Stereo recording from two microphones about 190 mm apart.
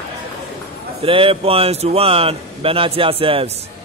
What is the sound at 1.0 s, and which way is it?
A man's voice, 30° right (ahead or behind).